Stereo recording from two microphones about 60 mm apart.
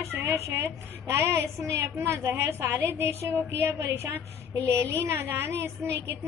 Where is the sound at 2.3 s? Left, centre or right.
Right.